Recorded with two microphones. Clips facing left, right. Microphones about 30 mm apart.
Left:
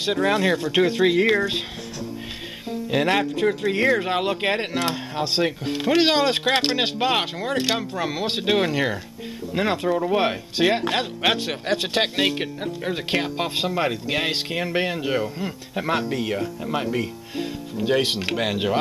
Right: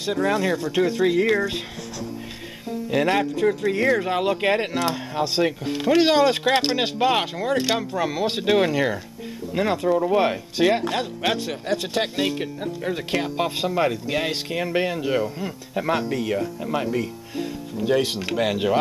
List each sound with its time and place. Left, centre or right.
0.0 s speech: left
2.7 s speech: centre
9.6 s speech: left
11.2 s speech: left
18.3 s speech: centre